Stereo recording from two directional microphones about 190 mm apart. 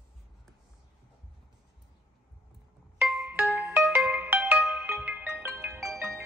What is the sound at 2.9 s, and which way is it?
Music, 10° right (ahead or behind).